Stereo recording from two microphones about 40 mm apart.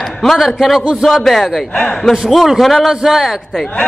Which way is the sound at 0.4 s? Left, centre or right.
Centre.